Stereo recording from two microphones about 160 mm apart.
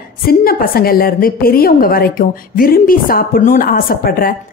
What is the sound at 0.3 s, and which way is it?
A woman's voice, 65° left (ahead or behind).